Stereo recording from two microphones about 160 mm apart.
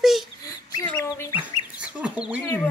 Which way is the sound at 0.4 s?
25° left (ahead or behind).